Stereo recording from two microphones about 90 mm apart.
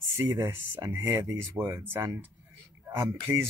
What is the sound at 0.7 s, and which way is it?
Speech, 45° right (ahead or behind).